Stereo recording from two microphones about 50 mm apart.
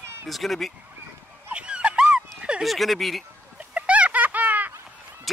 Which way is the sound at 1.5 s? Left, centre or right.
Right.